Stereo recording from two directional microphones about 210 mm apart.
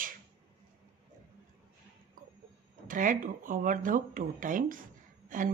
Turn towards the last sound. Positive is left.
turn(degrees=-40)  # may be behind; listen again after turning